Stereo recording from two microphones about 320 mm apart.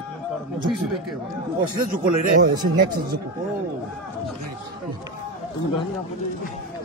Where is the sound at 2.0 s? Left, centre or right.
Right.